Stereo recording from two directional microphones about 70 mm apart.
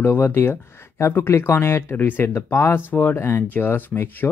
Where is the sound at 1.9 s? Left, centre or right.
Left.